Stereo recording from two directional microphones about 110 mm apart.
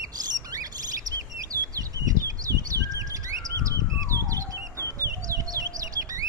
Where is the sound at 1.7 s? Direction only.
30° right (ahead or behind).